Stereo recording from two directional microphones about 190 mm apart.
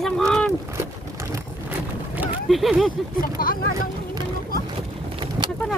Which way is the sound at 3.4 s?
50° left (ahead or behind).